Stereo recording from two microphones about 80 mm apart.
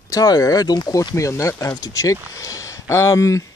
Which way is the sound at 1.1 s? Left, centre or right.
Left.